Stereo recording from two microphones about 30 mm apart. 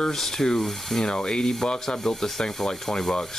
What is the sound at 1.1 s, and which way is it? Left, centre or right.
Speech, left.